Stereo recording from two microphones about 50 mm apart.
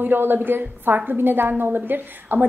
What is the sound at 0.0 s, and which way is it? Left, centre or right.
A woman's voice, right.